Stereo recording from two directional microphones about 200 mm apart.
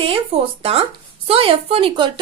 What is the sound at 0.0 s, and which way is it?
Speech, 30° right (ahead or behind).